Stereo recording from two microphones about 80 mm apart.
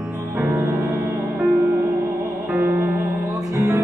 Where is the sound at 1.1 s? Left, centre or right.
Right.